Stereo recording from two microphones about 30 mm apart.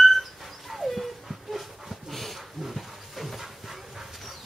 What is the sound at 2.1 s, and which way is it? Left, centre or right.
Dog, centre.